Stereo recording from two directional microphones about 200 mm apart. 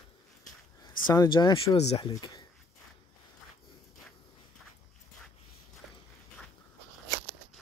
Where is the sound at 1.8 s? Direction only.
30° left (ahead or behind).